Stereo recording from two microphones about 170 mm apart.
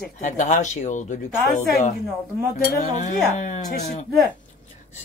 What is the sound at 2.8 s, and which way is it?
Speech, 45° left (ahead or behind).